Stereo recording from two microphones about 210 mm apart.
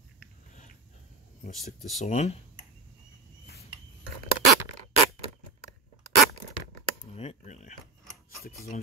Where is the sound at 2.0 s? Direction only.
30° left (ahead or behind).